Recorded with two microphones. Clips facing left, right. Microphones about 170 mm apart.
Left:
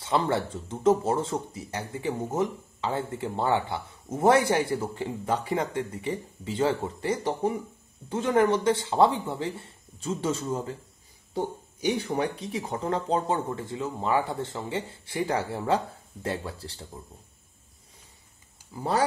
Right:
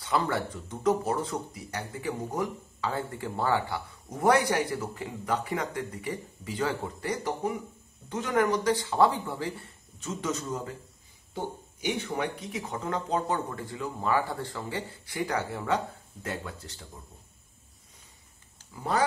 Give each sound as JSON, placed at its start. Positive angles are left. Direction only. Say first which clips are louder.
{"t": 0.0, "sound": "speech", "louder": "left 3 dB", "side_deg": 25}